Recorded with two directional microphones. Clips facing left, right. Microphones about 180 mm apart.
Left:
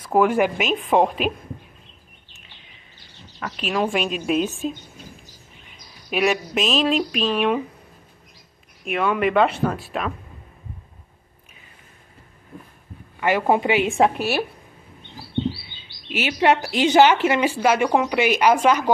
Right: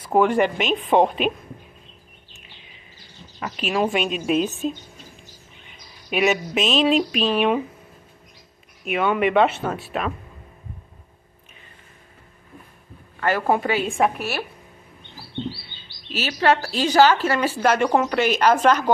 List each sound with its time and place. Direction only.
0.1 s speech: 5° left (ahead or behind)
3.5 s speech: 5° right (ahead or behind)
6.0 s speech: centre (ahead or behind)
8.8 s speech: centre (ahead or behind)
13.2 s a woman's voice: 15° left (ahead or behind)
16.1 s speech: 15° left (ahead or behind)